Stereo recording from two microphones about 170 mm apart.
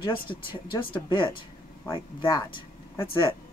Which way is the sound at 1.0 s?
30° left (ahead or behind).